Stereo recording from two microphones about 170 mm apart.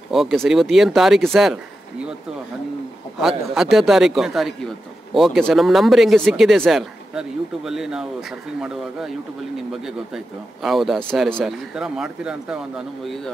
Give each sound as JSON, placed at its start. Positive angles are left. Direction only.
{"t": 0.1, "sound": "speech", "side_deg": 0}
{"t": 3.2, "sound": "speech", "side_deg": 0}